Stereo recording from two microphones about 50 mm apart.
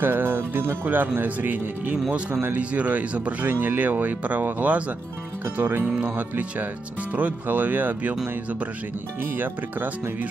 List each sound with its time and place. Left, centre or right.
0.0 s speech: right
5.4 s speech: right
5.9 s speech: right
6.1 s speech: right
9.2 s speech: right